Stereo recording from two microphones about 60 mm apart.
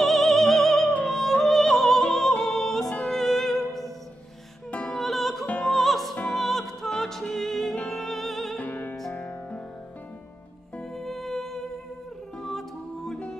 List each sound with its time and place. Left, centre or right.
0.0 s music: centre
8.5 s music: left
10.8 s music: centre